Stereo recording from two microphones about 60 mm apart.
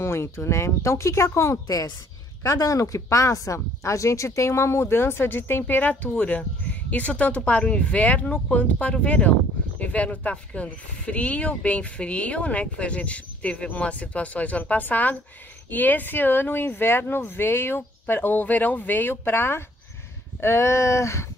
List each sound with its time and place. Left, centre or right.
0.0 s speech: left
2.4 s speech: left
20.3 s a sound: left